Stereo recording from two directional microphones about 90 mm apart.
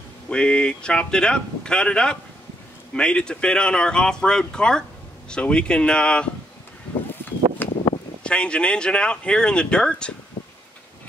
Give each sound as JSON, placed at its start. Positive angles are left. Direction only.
{"t": 0.3, "sound": "speech", "side_deg": 10}
{"t": 7.6, "sound": "a sound", "side_deg": 20}
{"t": 8.2, "sound": "speech", "side_deg": 10}